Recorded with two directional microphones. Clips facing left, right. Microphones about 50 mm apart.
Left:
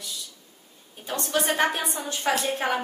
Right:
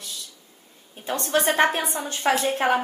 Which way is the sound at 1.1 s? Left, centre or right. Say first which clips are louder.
Right 3 dB; right.